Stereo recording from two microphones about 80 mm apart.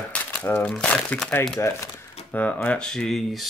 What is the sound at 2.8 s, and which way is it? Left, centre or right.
Speech, centre.